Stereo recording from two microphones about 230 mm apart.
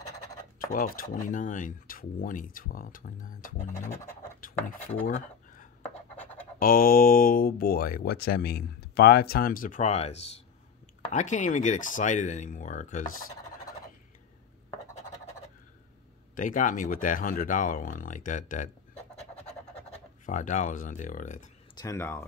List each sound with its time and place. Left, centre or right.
0.6 s speech: left
5.0 s a sound: left
6.6 s speech: left
16.3 s speech: left
20.2 s speech: left
21.7 s speech: centre